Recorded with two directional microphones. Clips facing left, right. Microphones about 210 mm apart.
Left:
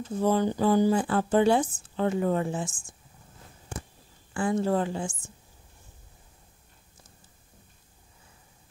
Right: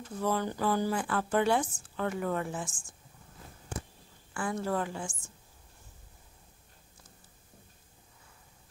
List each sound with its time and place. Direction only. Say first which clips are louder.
0.1 s speech: left 7 dB; 25° left (ahead or behind)
4.3 s speech: left 7 dB; 25° left (ahead or behind)